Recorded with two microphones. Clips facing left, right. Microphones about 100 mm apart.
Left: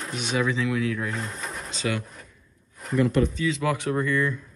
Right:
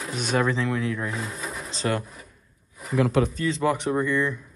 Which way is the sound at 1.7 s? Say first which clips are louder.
Right 2 dB; 35° right (ahead or behind).